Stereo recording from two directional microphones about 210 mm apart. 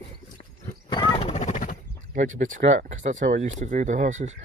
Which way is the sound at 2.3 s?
35° right (ahead or behind).